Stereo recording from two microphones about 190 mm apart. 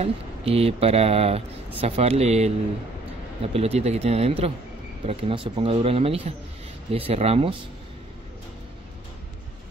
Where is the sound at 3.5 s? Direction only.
30° right (ahead or behind).